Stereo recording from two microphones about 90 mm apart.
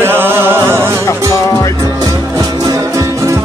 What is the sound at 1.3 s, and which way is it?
Music, 35° left (ahead or behind).